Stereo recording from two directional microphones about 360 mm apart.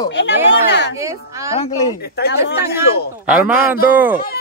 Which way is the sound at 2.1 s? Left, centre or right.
Left.